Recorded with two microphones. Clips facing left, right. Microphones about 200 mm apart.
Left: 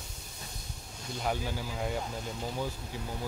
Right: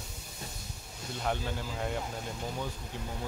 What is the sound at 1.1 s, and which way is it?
Speech, 5° left (ahead or behind).